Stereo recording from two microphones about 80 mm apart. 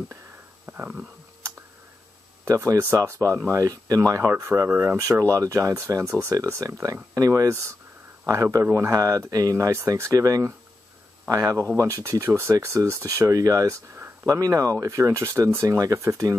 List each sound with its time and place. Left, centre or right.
2.4 s speech: right
4.9 s speech: right